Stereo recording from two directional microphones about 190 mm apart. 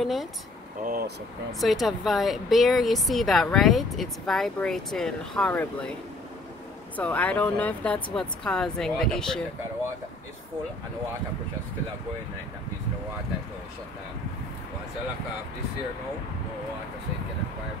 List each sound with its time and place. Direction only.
0.0 s speech: centre (ahead or behind)
0.8 s speech: 50° right (ahead or behind)
1.6 s speech: centre (ahead or behind)
7.0 s speech: 10° left (ahead or behind)